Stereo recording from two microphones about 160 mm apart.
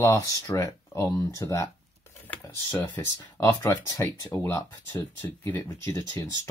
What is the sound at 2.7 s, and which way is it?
Speech, 15° left (ahead or behind).